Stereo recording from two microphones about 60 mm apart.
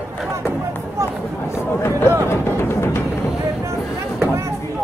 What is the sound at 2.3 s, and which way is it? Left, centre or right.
Music, left.